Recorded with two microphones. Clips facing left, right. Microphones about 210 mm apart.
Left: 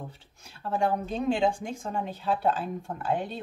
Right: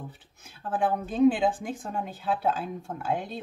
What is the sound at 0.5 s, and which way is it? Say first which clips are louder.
Speech: even; centre (ahead or behind).